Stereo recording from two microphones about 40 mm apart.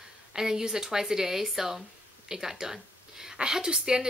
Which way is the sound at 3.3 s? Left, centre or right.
Centre.